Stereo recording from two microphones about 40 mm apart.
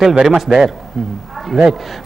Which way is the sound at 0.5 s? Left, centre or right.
Right.